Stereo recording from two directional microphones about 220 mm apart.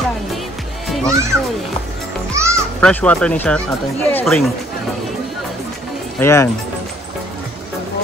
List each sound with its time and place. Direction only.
0.8 s music: centre (ahead or behind)
1.1 s a child's voice: 10° right (ahead or behind)
2.3 s music: 15° right (ahead or behind)
2.8 s speech: 5° left (ahead or behind)
6.1 s speech: 10° left (ahead or behind)